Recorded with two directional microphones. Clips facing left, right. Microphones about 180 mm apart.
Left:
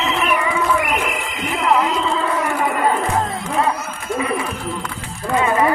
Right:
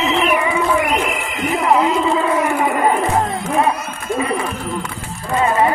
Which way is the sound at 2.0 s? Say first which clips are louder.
Right 4 dB; 10° right (ahead or behind).